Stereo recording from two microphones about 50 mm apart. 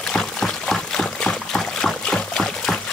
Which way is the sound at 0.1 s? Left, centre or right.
Centre.